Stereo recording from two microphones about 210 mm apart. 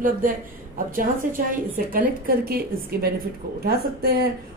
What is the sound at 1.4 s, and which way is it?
A woman's voice, 45° right (ahead or behind).